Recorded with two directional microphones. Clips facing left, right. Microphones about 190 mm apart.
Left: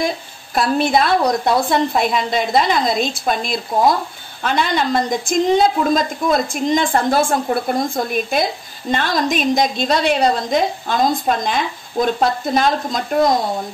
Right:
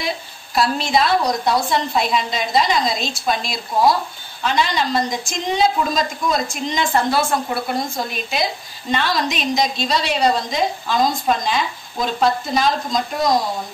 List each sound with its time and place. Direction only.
0.6 s a woman's voice: 55° left (ahead or behind)